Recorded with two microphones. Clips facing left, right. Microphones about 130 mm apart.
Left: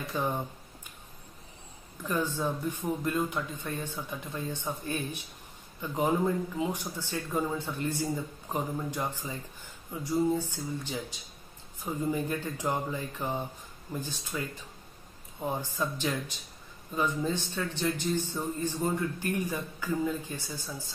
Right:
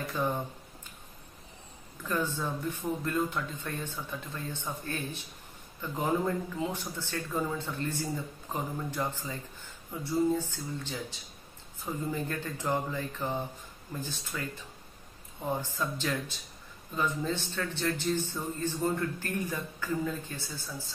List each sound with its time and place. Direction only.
0.2 s speech: 15° left (ahead or behind)
2.0 s speech: 15° left (ahead or behind)
15.6 s speech: 15° left (ahead or behind)